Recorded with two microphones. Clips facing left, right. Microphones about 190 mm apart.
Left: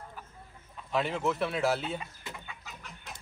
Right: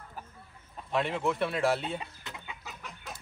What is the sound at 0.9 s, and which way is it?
Speech, centre (ahead or behind).